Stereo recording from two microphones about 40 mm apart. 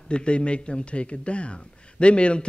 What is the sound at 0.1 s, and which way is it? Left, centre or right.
A man's voice, left.